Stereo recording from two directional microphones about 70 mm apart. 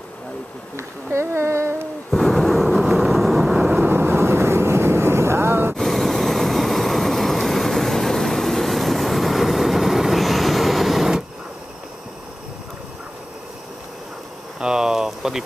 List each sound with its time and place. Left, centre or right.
0.7 s female singing: right
2.0 s a sound: centre
3.0 s vehicle: centre
3.8 s vehicle: right
5.8 s vehicle: centre
14.6 s a sound: centre